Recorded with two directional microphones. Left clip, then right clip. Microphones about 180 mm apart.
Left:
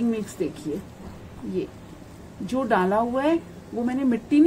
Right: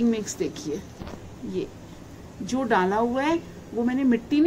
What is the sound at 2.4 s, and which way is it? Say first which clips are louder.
Speech: even; 40° left (ahead or behind).